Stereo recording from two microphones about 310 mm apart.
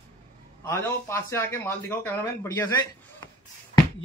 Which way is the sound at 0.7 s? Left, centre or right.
Centre.